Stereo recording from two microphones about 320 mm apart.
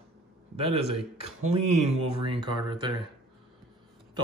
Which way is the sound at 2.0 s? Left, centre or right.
Right.